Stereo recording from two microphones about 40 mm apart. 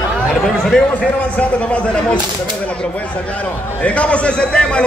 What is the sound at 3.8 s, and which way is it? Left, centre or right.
A man's voice, left.